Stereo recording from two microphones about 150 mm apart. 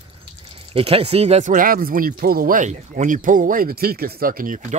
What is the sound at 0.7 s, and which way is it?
Speech, 40° right (ahead or behind).